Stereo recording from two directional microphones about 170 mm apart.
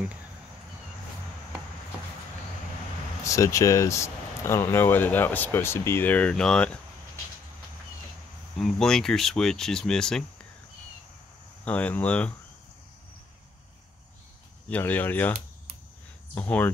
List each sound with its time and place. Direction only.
3.3 s speech: 20° left (ahead or behind)
8.5 s speech: centre (ahead or behind)
11.6 s speech: 10° left (ahead or behind)
14.7 s speech: 10° left (ahead or behind)
16.3 s speech: 10° left (ahead or behind)